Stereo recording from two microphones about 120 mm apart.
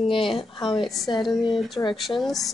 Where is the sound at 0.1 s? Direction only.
45° left (ahead or behind).